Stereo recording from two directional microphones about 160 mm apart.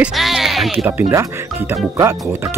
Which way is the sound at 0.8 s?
15° right (ahead or behind).